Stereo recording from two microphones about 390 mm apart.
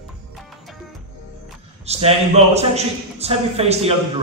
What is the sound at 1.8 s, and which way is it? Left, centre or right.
A man's voice, centre.